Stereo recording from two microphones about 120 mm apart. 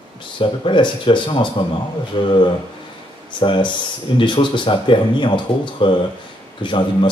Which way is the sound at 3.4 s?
45° left (ahead or behind).